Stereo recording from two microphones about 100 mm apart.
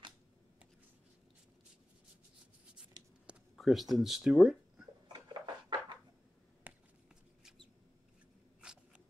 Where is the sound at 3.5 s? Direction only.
Centre (ahead or behind).